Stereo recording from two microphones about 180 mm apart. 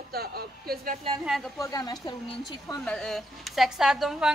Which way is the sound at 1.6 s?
20° left (ahead or behind).